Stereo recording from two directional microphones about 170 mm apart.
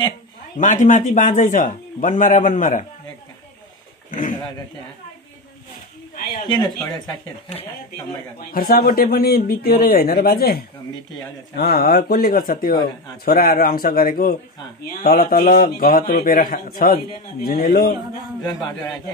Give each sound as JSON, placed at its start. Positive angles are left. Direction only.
{"t": 0.6, "sound": "a man's voice", "side_deg": 50}
{"t": 4.1, "sound": "speech", "side_deg": 50}
{"t": 6.4, "sound": "speech", "side_deg": 25}
{"t": 8.4, "sound": "a man's voice", "side_deg": 60}
{"t": 18.4, "sound": "speech", "side_deg": 25}